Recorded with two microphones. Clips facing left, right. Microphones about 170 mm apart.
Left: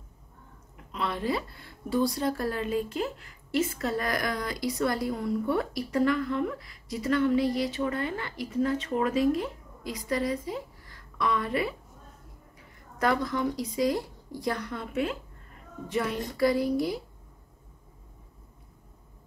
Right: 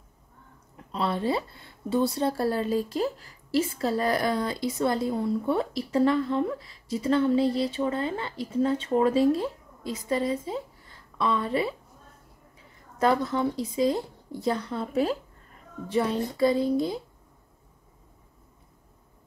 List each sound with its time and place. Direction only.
0.9 s a woman's voice: 30° right (ahead or behind)
13.0 s a woman's voice: 30° right (ahead or behind)